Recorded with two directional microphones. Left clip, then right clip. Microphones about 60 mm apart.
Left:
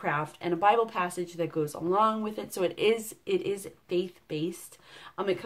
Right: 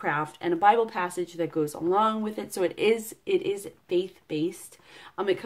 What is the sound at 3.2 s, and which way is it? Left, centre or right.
A woman's voice, right.